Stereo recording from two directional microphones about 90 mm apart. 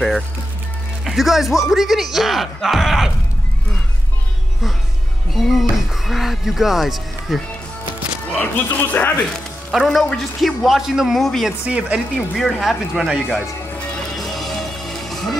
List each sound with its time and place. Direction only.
1.0 s a man's voice: centre (ahead or behind)
5.3 s speech: centre (ahead or behind)
8.3 s speech: 20° left (ahead or behind)
9.3 s a man's voice: centre (ahead or behind)
11.6 s speech: 10° right (ahead or behind)
12.4 s a man's voice: centre (ahead or behind)
14.1 s music: centre (ahead or behind)